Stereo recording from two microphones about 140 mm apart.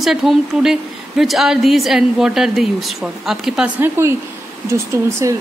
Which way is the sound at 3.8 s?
20° right (ahead or behind).